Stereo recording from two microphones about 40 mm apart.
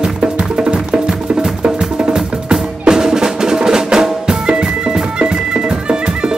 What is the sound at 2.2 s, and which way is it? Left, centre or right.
Percussion, centre.